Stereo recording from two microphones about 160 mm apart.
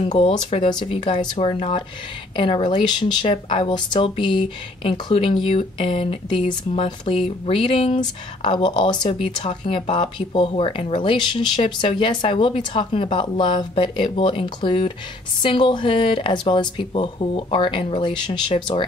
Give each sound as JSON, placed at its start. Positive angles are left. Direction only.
{"t": 0.1, "sound": "speech", "side_deg": 35}